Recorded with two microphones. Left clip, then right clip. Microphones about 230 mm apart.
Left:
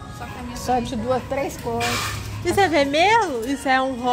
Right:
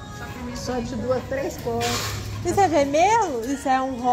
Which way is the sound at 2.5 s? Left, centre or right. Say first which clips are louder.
Left 1 dB; centre.